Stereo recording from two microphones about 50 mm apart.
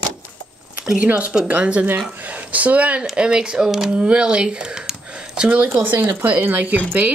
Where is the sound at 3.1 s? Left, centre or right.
Centre; by 6.8 s right.